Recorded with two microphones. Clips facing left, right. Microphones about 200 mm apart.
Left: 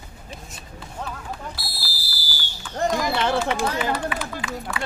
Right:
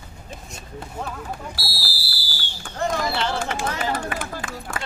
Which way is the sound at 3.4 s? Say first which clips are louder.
Left 2 dB; 50° right (ahead or behind).